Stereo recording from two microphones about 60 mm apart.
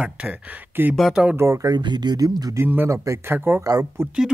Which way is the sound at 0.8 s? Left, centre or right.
Right.